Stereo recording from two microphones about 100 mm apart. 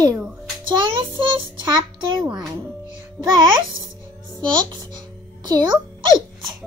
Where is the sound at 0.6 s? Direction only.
50° right (ahead or behind).